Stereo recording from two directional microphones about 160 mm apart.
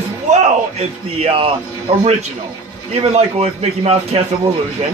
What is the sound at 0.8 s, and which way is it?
A man's voice, 35° right (ahead or behind).